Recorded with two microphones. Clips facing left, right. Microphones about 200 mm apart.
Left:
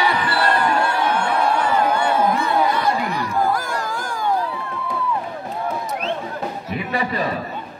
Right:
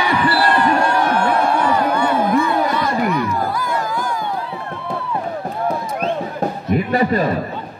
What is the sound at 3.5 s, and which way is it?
Music, 45° left (ahead or behind).